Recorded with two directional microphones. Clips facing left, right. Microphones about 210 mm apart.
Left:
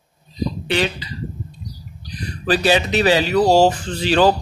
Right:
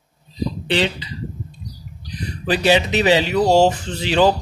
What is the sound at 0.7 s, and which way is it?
Speech, 25° right (ahead or behind).